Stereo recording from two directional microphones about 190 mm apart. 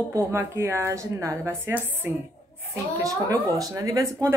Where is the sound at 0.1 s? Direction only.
15° right (ahead or behind).